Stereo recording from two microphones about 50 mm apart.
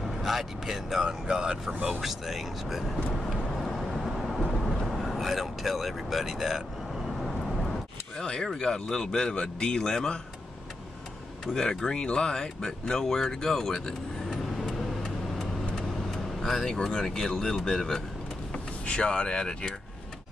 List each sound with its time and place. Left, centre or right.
0.0 s speech: centre
2.0 s speech: centre
3.1 s vehicle: centre
8.2 s speech: centre
11.4 s speech: centre
14.8 s vehicle: centre
16.3 s speech: centre
18.5 s speech: left